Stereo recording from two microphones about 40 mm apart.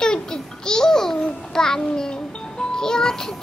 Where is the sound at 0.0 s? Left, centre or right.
Centre.